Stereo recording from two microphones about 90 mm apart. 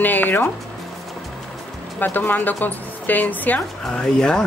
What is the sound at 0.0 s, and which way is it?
Speech, 20° left (ahead or behind).